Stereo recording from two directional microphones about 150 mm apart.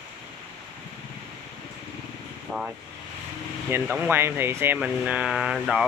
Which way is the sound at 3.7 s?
15° right (ahead or behind).